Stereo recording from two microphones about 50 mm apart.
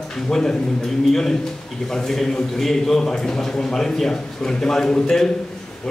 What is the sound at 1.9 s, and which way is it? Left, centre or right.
A man's voice, centre.